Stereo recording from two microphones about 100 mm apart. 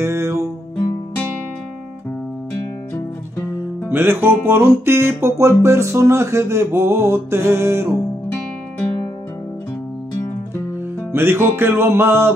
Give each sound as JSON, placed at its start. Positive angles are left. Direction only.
{"t": 0.0, "sound": "music", "side_deg": -25}
{"t": 3.9, "sound": "music", "side_deg": -20}
{"t": 11.1, "sound": "music", "side_deg": -25}